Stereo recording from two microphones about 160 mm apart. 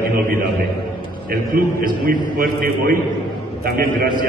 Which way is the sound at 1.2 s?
65° right (ahead or behind).